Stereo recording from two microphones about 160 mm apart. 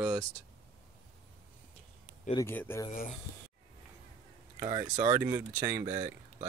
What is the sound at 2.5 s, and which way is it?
Speech, 15° left (ahead or behind).